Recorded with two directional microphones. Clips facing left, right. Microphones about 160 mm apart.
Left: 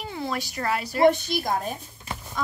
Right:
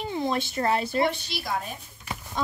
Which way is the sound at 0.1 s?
25° right (ahead or behind).